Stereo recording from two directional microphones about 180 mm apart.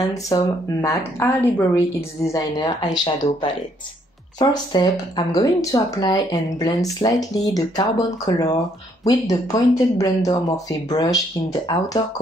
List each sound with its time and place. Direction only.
0.3 s a woman's voice: 15° left (ahead or behind)
4.4 s speech: 25° left (ahead or behind)